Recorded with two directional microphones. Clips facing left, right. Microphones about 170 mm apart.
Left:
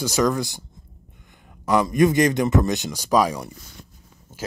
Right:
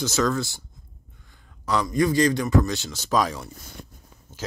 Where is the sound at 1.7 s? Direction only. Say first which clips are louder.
Left 4 dB; 20° left (ahead or behind).